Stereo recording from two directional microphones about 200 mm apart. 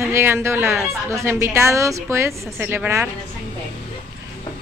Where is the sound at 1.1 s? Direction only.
15° right (ahead or behind).